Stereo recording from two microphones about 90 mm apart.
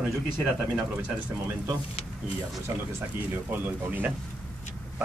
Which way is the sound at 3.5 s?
20° right (ahead or behind).